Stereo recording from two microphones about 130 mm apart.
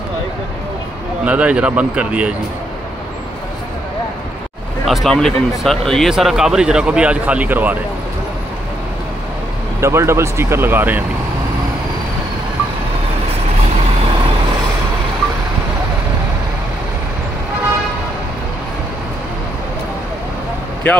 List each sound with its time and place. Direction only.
1.2 s speech: 10° right (ahead or behind)
4.8 s speech: centre (ahead or behind)
9.8 s speech: 20° right (ahead or behind)
20.9 s speech: 10° left (ahead or behind)